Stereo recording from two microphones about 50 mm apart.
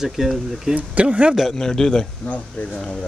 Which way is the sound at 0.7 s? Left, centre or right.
Right.